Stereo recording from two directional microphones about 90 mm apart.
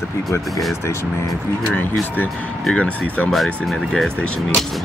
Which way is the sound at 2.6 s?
10° left (ahead or behind).